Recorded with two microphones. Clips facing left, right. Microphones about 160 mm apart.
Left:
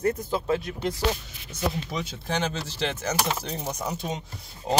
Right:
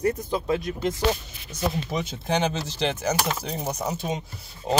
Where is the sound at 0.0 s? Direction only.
15° right (ahead or behind).